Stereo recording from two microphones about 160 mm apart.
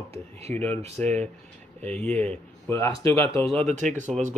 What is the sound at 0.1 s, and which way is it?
Speech, 40° right (ahead or behind).